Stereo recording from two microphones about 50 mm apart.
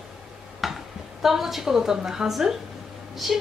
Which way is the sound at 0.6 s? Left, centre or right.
Centre.